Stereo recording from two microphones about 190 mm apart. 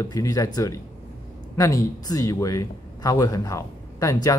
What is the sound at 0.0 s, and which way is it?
A man's voice, 15° left (ahead or behind).